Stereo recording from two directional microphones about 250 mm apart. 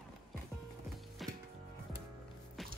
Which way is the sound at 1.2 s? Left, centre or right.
Centre.